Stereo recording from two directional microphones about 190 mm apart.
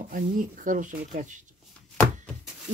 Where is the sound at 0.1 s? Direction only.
45° right (ahead or behind).